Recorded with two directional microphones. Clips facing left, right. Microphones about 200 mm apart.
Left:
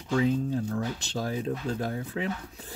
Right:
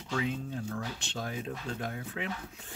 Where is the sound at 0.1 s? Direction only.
35° left (ahead or behind).